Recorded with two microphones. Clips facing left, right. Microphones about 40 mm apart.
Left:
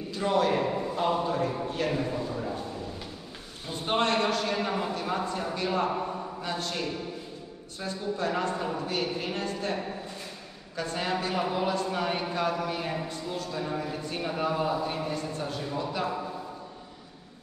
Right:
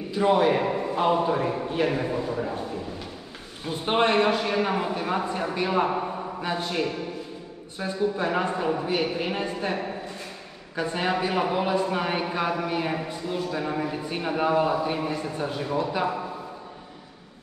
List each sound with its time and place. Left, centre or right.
0.1 s a man's voice: right
3.6 s a man's voice: right